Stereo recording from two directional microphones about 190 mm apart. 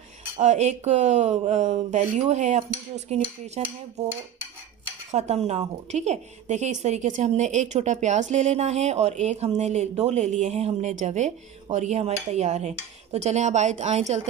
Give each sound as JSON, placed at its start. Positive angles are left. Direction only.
{"t": 0.4, "sound": "speech", "side_deg": -35}
{"t": 3.6, "sound": "dishes", "side_deg": -10}
{"t": 5.1, "sound": "speech", "side_deg": -35}